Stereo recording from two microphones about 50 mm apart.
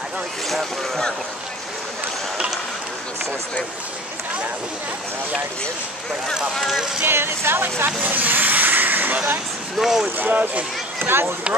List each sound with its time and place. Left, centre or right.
0.5 s speech: centre
2.3 s a sound: centre
6.5 s speech: centre
7.1 s speech: right
9.8 s speech: centre
10.0 s speech: right